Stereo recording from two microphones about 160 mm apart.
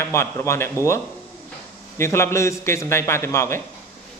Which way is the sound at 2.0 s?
15° left (ahead or behind).